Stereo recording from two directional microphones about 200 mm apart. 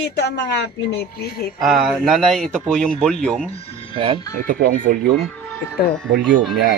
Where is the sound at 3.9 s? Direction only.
25° right (ahead or behind).